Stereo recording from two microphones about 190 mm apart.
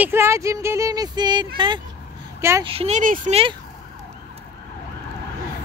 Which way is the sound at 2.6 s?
30° right (ahead or behind).